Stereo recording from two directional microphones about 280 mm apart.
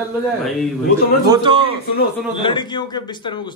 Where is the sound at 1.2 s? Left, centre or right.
Centre.